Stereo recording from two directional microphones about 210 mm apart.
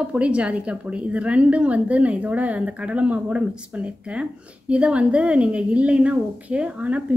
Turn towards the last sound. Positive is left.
turn(degrees=-5)  # may be behind; listen again after turning